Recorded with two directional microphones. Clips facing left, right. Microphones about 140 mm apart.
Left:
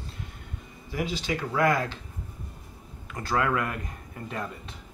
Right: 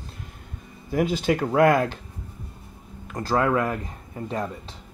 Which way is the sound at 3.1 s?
35° right (ahead or behind).